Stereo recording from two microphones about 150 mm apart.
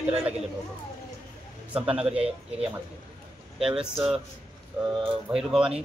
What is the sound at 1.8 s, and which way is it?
Speech, 10° right (ahead or behind).